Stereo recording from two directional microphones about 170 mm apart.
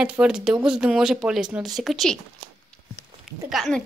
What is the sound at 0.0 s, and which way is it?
Speech, 5° right (ahead or behind).